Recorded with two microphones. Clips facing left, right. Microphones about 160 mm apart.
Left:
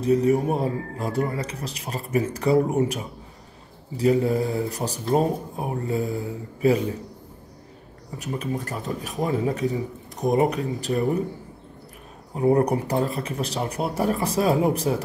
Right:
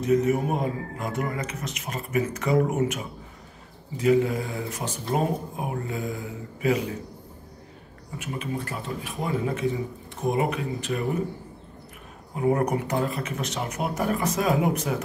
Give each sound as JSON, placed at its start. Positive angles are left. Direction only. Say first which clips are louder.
{"t": 0.0, "sound": "a man's voice", "louder": "left 2 dB", "side_deg": 35}
{"t": 8.2, "sound": "a man's voice", "louder": "left 3 dB", "side_deg": 40}
{"t": 12.4, "sound": "a man's voice", "louder": "left 4 dB", "side_deg": 35}